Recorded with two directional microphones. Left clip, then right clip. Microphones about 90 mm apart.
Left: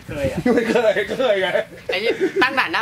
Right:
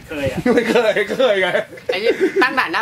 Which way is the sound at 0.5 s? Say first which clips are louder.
Right 3 dB; 15° right (ahead or behind).